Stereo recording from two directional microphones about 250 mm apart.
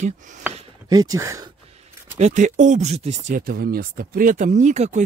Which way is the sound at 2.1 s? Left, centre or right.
Right.